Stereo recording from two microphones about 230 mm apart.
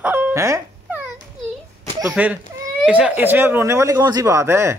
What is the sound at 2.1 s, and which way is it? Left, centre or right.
Speech, centre.